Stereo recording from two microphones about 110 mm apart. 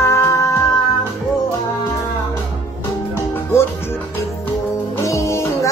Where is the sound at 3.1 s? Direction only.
25° left (ahead or behind).